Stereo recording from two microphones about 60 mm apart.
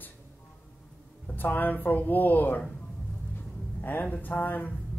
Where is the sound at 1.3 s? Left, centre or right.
Left.